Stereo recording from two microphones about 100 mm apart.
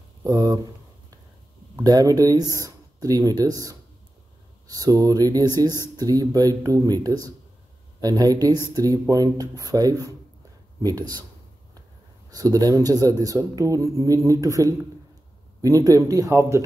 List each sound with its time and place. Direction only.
0.2 s speech: 40° right (ahead or behind)
1.8 s speech: 40° right (ahead or behind)
12.3 s speech: 40° right (ahead or behind)